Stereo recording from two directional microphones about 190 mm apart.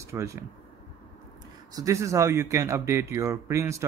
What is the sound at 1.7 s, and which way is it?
Speech, 15° right (ahead or behind).